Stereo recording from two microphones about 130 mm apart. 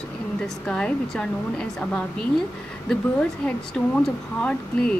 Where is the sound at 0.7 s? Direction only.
5° left (ahead or behind).